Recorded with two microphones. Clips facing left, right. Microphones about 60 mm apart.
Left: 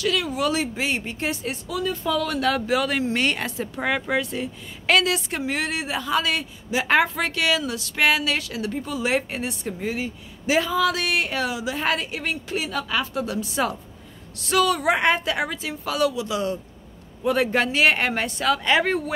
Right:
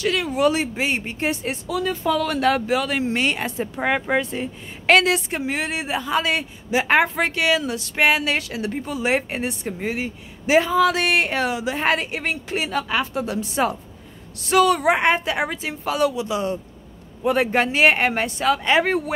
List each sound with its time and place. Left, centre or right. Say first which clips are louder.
0.0 s a man's voice: right 4 dB; right
2.7 s speech: right 1 dB; centre
3.0 s a woman's voice: right 1 dB; right
4.8 s a woman's voice: right 4 dB; right
5.3 s a man's voice: right 1 dB; centre